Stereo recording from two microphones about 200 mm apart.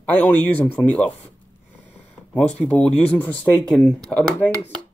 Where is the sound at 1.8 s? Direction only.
5° left (ahead or behind).